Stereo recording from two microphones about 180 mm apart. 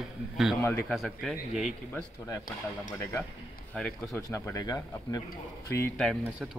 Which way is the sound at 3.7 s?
Centre (ahead or behind).